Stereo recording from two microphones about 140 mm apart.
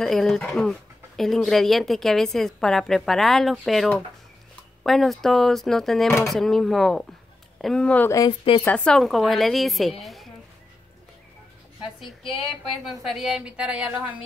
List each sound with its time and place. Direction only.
0.0 s speech: centre (ahead or behind)
8.3 s speech: 40° left (ahead or behind)
8.6 s speech: 5° left (ahead or behind)
12.0 s speech: 40° left (ahead or behind)
13.0 s a woman's voice: centre (ahead or behind)